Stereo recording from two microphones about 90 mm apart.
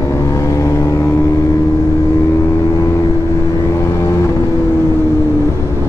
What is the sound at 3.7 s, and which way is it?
Vehicle, 35° left (ahead or behind).